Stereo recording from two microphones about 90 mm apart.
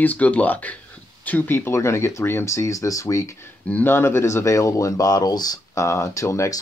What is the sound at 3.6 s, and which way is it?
Speech, 20° left (ahead or behind).